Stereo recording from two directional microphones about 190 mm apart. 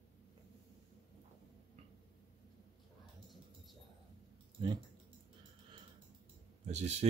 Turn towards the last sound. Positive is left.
turn(degrees=-35)  # may be behind; listen again after turning